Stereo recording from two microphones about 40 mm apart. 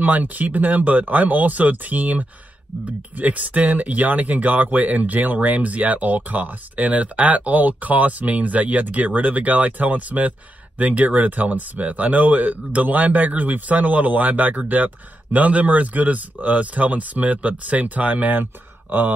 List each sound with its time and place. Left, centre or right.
0.0 s speech: right